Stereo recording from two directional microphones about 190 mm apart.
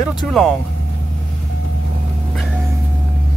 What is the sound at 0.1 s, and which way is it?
Speech, centre (ahead or behind).